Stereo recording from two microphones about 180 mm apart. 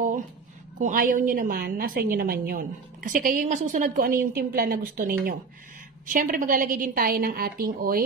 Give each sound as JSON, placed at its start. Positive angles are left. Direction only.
{"t": 0.7, "sound": "a woman's voice", "side_deg": -45}